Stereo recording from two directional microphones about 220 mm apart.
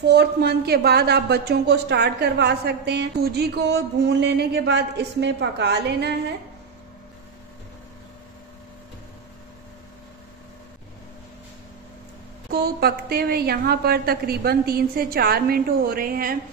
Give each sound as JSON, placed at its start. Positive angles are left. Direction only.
{"t": 0.0, "sound": "speech", "side_deg": -50}
{"t": 12.4, "sound": "speech", "side_deg": -45}